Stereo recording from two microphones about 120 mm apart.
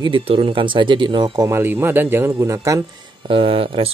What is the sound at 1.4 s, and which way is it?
Speech, 20° right (ahead or behind).